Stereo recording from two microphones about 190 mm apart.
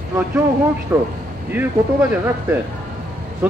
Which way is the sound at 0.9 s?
15° right (ahead or behind).